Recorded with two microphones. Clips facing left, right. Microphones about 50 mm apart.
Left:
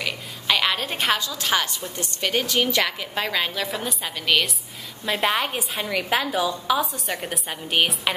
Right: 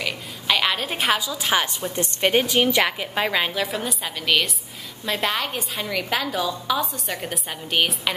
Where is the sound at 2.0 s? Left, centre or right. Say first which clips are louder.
Right 5 dB; right.